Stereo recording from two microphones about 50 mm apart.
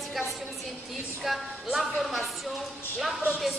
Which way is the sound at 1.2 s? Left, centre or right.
Centre.